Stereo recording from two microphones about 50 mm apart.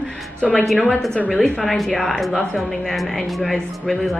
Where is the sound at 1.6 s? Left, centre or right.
Centre.